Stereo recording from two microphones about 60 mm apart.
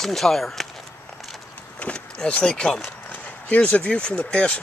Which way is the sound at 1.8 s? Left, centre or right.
Centre.